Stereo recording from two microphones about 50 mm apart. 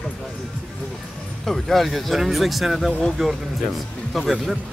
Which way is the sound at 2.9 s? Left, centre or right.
Left.